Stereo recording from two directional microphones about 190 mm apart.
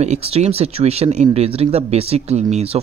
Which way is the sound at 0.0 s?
35° right (ahead or behind).